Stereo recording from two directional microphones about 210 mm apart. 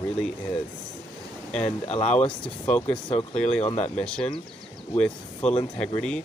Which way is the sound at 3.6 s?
30° left (ahead or behind).